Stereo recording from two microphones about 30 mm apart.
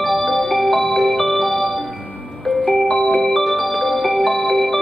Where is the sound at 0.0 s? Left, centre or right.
Centre.